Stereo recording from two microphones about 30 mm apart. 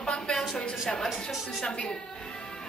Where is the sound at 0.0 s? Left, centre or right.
Left.